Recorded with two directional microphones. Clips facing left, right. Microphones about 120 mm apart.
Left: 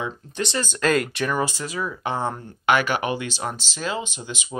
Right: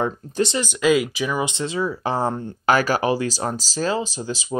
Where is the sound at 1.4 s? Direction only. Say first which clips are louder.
Right 3 dB; 25° right (ahead or behind).